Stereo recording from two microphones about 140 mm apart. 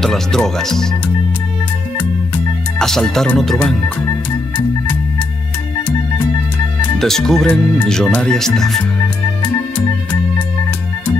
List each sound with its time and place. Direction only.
0.0 s speech: 5° left (ahead or behind)
2.0 s music: 5° left (ahead or behind)
7.0 s speech: 5° left (ahead or behind)